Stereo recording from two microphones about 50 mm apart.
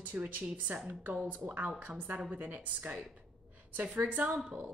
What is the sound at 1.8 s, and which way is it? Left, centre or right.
A woman's voice, right.